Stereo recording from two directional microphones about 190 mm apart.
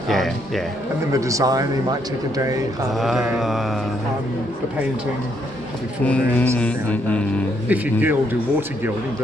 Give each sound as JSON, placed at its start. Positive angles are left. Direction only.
{"t": 0.1, "sound": "speech", "side_deg": 0}
{"t": 1.1, "sound": "speech", "side_deg": -15}
{"t": 2.9, "sound": "speech", "side_deg": 0}
{"t": 6.0, "sound": "a man's voice", "side_deg": 5}
{"t": 7.6, "sound": "speech", "side_deg": -10}